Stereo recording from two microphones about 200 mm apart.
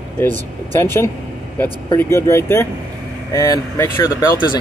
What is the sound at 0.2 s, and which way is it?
Speech, 10° left (ahead or behind).